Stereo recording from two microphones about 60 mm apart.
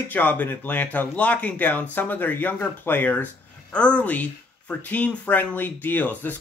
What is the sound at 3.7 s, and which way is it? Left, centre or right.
Speech, centre.